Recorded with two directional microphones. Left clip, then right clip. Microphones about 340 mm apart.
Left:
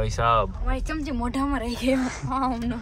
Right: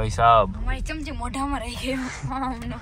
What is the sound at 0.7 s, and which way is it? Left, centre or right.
Speech, left.